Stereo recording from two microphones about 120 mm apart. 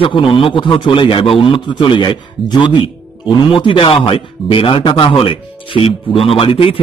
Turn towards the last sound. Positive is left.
turn(degrees=50)  # may be behind; listen again after turning